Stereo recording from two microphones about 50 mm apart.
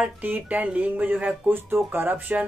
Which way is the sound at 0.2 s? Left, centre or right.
Right.